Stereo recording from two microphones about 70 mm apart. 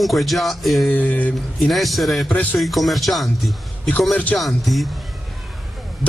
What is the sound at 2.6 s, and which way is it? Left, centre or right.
Speech, centre.